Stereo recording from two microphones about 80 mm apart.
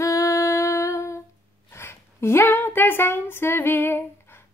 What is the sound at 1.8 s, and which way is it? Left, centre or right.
Speech, left.